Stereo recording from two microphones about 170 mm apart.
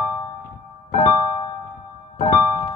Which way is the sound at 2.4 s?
15° left (ahead or behind).